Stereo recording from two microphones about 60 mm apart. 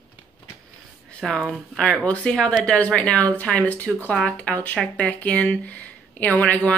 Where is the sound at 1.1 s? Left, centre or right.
Centre.